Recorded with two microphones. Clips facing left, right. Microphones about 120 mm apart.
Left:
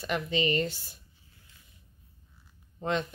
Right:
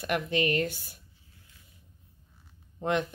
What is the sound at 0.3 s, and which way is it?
Speech, 60° right (ahead or behind).